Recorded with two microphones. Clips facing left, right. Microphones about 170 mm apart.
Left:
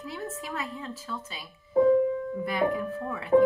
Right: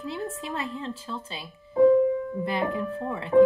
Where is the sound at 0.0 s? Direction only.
30° right (ahead or behind).